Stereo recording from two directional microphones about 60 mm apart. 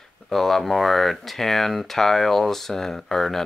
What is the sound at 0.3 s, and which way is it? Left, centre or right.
Speech, centre.